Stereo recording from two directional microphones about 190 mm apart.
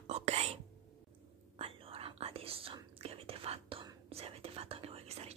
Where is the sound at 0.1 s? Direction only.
35° right (ahead or behind).